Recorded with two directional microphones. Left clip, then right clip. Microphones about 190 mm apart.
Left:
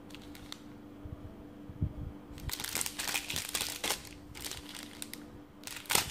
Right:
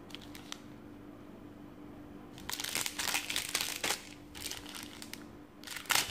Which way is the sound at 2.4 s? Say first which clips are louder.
Right 1 dB; centre (ahead or behind).